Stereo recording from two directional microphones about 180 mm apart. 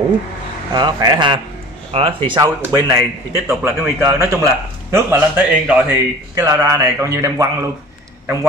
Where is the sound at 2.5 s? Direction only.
15° right (ahead or behind).